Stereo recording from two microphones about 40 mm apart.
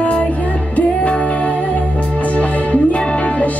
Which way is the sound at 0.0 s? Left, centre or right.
Left.